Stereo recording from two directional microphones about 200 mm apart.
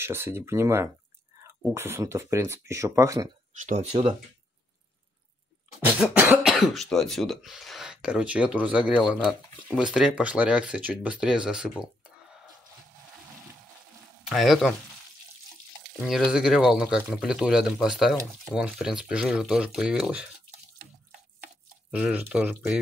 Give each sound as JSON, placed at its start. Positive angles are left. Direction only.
{"t": 0.0, "sound": "speech", "side_deg": -10}
{"t": 3.6, "sound": "speech", "side_deg": -35}
{"t": 5.9, "sound": "speech", "side_deg": -10}
{"t": 14.3, "sound": "speech", "side_deg": 0}
{"t": 15.8, "sound": "speech", "side_deg": 0}
{"t": 21.9, "sound": "speech", "side_deg": -5}